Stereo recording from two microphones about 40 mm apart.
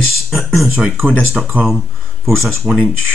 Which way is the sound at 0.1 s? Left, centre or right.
Centre.